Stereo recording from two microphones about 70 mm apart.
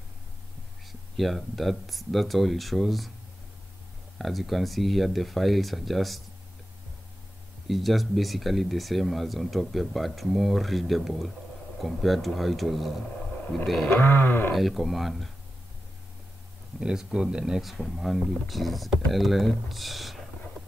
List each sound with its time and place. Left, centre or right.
1.1 s speech: centre
4.2 s speech: centre
7.6 s speech: centre
13.8 s wild animals: left
14.5 s speech: centre
16.8 s speech: centre